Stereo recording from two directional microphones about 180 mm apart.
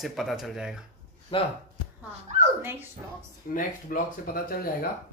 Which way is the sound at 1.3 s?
30° left (ahead or behind).